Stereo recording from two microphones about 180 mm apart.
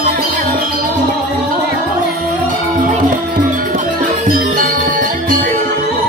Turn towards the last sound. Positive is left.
turn(degrees=-50)  # may be behind; listen again after turning